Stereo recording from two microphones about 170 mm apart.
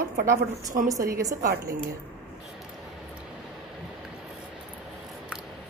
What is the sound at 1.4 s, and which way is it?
Speech, 60° right (ahead or behind).